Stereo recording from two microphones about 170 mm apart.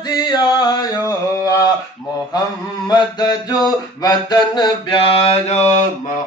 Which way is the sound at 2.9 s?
25° left (ahead or behind).